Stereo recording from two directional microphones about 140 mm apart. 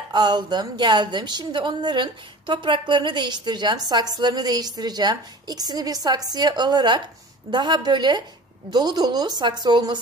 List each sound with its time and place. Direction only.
0.1 s a woman's voice: 30° right (ahead or behind)